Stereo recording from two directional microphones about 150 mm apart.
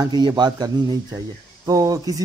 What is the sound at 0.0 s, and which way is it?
Speech, 25° right (ahead or behind).